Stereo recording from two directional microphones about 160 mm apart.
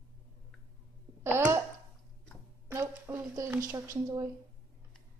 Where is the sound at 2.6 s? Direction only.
15° right (ahead or behind).